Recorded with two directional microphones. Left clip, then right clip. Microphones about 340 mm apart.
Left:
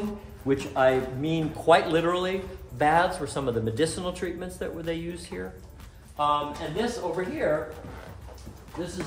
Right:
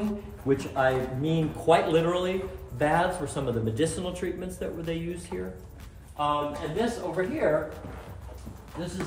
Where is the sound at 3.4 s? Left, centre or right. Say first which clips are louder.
Left 3 dB; left.